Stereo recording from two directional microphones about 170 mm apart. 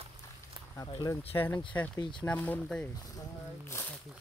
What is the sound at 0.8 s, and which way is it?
Speech, 30° left (ahead or behind).